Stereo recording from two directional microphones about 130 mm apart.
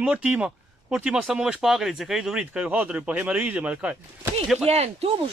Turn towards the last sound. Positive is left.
turn(degrees=-55)  # may be behind; listen again after turning